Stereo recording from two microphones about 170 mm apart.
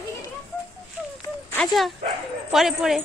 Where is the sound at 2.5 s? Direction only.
Centre (ahead or behind).